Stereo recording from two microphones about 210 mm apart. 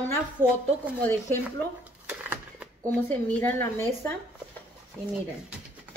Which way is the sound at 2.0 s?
5° right (ahead or behind).